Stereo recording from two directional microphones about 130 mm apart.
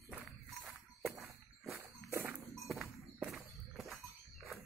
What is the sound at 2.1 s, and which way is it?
Cowbell, 15° right (ahead or behind).